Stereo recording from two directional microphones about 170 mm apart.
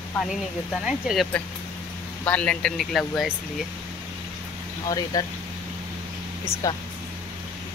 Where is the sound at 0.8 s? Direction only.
5° right (ahead or behind).